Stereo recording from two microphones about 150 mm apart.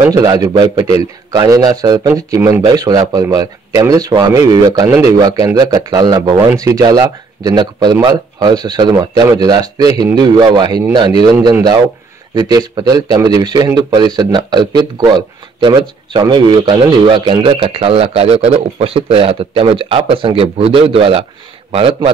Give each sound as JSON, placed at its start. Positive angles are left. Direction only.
{"t": 0.1, "sound": "speech", "side_deg": -25}